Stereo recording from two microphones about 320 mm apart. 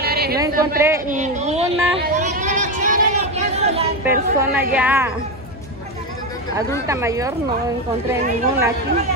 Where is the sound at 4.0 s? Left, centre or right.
Centre.